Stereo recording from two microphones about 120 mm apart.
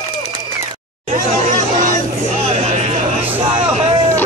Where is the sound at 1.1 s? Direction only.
90° right.